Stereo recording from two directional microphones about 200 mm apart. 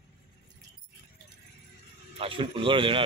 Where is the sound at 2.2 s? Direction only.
25° right (ahead or behind).